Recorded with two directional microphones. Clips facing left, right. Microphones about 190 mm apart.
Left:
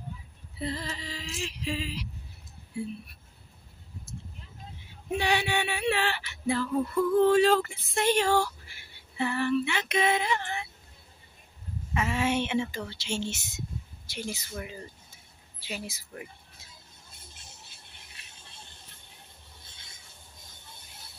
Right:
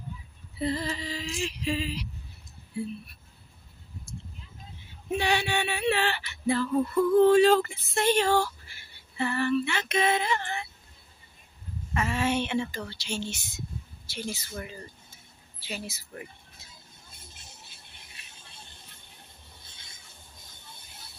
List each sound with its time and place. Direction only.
0.6 s a sound: 5° right (ahead or behind)
5.1 s male singing: 15° left (ahead or behind)
7.2 s a sound: 5° left (ahead or behind)
8.0 s male singing: 10° left (ahead or behind)
11.9 s a woman's voice: 15° left (ahead or behind)
14.0 s male singing: 15° left (ahead or behind)